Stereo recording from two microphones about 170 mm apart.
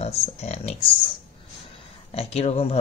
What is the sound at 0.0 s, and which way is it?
Speech, 40° left (ahead or behind).